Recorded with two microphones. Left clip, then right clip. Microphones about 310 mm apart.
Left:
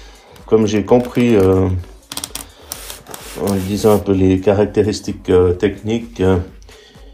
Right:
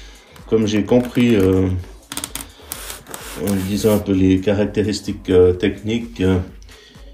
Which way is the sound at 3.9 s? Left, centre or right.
Left.